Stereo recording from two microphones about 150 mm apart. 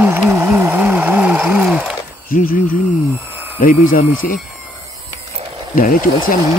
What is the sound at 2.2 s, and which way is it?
Speech, 70° left (ahead or behind).